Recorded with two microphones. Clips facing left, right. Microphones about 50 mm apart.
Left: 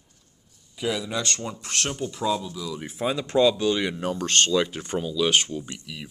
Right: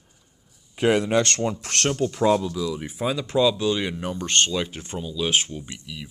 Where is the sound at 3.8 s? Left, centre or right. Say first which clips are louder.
Left 1 dB; centre.